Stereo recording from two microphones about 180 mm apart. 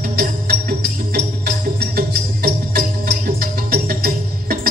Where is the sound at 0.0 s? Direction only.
55° right (ahead or behind).